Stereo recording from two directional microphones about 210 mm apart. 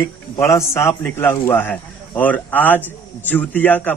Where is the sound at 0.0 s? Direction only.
15° left (ahead or behind).